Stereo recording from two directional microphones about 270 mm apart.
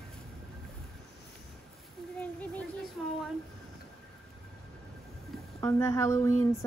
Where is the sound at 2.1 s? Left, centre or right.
Centre.